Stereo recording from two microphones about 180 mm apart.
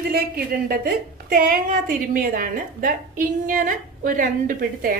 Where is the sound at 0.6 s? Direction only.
55° right (ahead or behind).